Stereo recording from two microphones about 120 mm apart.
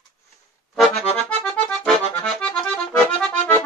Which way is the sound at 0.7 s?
Centre (ahead or behind).